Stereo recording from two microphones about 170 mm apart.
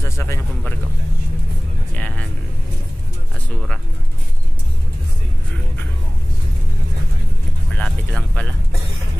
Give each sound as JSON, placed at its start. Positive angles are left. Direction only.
{"t": 0.0, "sound": "speech", "side_deg": 15}
{"t": 2.0, "sound": "speech", "side_deg": 10}
{"t": 7.7, "sound": "speech", "side_deg": 10}